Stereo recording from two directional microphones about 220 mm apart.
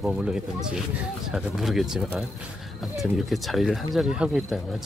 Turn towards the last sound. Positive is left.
turn(degrees=-5)  # may be behind; listen again after turning